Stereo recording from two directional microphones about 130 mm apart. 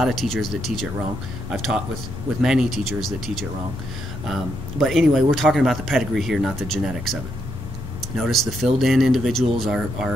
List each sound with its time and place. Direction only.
0.0 s speech: centre (ahead or behind)
8.2 s speech: centre (ahead or behind)